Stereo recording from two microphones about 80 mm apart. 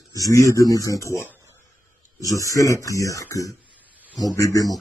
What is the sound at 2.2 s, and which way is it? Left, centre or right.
Speech, left.